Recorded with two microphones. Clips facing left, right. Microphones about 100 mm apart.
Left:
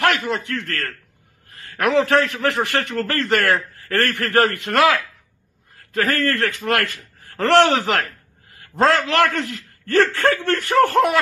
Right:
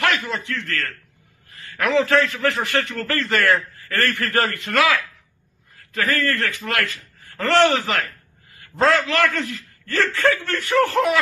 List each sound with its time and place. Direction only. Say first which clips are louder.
0.0 s a man's voice: left 3 dB; 55° left (ahead or behind)
5.9 s a man's voice: left 2 dB; 60° left (ahead or behind)